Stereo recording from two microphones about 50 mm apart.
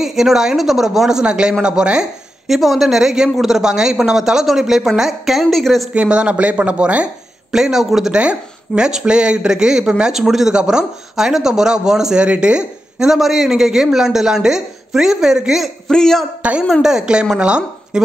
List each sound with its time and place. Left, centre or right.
0.0 s speech: centre
2.4 s a woman's voice: centre
5.9 s speech: right
7.5 s speech: centre
8.1 s speech: right
13.1 s speech: centre
15.9 s a man's voice: centre
16.8 s speech: centre